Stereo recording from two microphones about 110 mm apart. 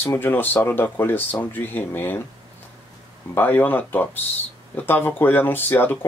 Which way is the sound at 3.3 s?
15° left (ahead or behind).